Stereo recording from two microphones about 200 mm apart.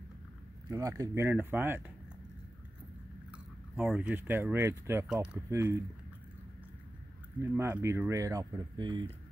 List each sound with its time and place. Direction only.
0.7 s speech: 15° right (ahead or behind)
3.3 s speech: 5° right (ahead or behind)
7.5 s speech: 10° right (ahead or behind)